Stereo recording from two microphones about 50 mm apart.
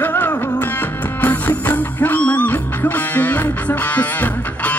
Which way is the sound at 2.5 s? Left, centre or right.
Left.